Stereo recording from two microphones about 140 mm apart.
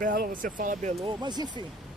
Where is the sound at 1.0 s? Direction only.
30° right (ahead or behind).